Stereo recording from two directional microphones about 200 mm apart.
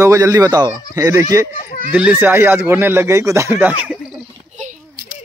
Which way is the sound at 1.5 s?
45° left (ahead or behind).